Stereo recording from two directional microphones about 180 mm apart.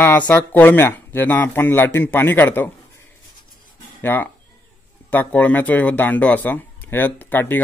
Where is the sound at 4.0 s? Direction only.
10° left (ahead or behind).